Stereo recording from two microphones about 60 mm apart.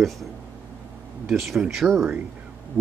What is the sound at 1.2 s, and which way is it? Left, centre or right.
Speech, centre.